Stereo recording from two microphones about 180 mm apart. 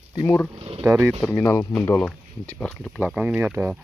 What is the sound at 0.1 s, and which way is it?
Speech, 20° left (ahead or behind).